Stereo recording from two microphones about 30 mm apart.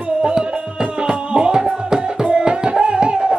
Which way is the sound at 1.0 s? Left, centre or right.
Right.